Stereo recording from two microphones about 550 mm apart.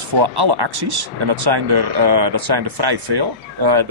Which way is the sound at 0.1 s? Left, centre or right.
Right.